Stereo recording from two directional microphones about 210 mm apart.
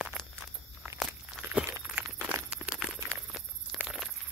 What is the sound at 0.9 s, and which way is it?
Walk, centre (ahead or behind).